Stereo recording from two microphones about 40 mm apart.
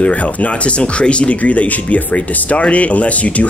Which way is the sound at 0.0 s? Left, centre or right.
Left.